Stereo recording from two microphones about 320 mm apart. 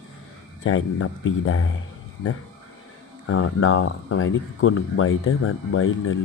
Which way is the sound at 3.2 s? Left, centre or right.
Left.